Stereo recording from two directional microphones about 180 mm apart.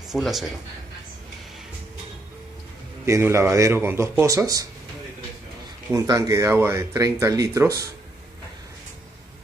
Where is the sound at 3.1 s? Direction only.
15° right (ahead or behind).